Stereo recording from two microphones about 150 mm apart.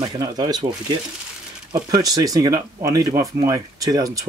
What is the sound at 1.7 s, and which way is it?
Speech, 25° right (ahead or behind).